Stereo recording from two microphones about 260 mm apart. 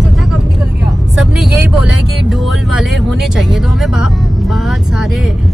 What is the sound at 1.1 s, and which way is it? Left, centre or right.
Vehicle, centre.